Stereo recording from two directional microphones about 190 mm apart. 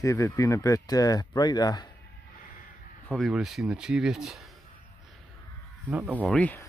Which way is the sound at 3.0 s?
Centre (ahead or behind).